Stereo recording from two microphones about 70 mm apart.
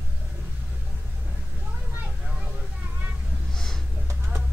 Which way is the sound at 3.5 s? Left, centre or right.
Centre.